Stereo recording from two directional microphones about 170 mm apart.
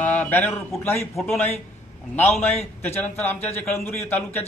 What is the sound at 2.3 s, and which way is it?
A man's voice, 10° left (ahead or behind).